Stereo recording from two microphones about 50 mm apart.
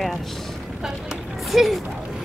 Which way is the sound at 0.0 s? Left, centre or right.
Centre.